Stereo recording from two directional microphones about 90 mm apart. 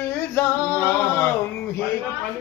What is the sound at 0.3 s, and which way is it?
Singing, 30° left (ahead or behind).